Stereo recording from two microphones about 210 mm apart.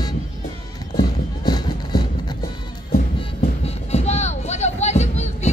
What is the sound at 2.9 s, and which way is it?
Music, 35° left (ahead or behind).